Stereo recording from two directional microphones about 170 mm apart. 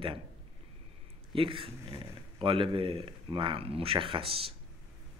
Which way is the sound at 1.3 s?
30° right (ahead or behind).